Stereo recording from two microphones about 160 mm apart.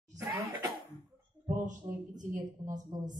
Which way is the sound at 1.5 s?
50° right (ahead or behind).